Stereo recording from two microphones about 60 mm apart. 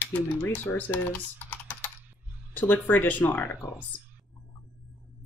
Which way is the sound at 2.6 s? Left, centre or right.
Left.